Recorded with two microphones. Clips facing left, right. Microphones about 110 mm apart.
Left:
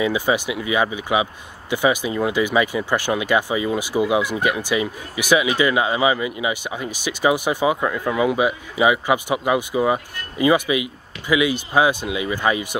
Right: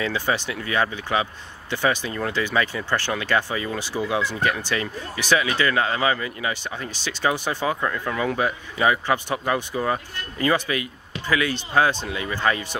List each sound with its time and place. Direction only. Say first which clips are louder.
0.0 s speech: left 5 dB; 15° left (ahead or behind)